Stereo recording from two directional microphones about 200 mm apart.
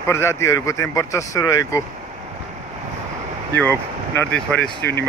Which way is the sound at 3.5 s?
10° left (ahead or behind).